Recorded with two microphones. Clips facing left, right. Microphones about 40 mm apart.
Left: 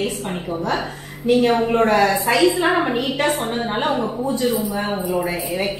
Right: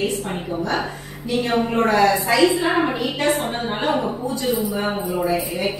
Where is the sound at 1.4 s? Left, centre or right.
Centre.